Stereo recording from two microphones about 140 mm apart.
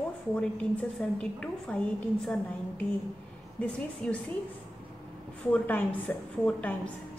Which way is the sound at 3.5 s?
10° left (ahead or behind).